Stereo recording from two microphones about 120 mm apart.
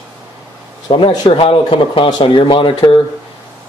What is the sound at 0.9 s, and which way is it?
Speech, 45° left (ahead or behind).